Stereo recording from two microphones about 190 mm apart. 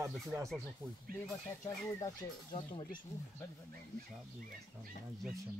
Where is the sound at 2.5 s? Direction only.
25° left (ahead or behind).